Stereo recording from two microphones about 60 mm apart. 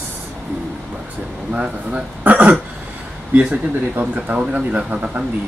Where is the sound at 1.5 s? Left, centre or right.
Centre.